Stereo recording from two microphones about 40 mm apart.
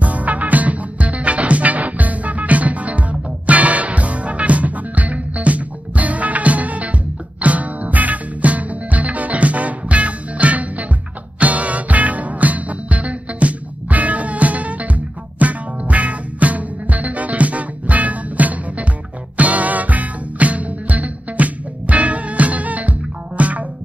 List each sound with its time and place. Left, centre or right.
0.0 s music: right